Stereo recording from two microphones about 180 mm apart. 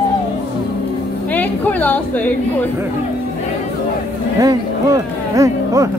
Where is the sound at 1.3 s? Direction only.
10° left (ahead or behind).